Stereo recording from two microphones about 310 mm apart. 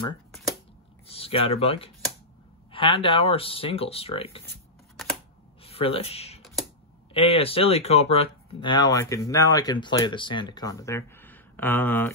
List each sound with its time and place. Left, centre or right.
1.1 s speech: centre
5.6 s a sound: centre
7.2 s speech: centre